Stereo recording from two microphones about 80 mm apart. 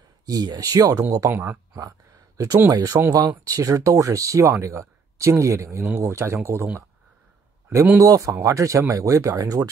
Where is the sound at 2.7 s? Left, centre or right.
Right.